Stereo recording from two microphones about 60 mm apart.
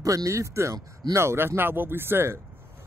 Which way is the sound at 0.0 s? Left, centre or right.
Right.